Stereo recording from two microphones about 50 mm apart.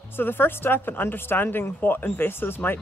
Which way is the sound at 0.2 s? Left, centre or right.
Left.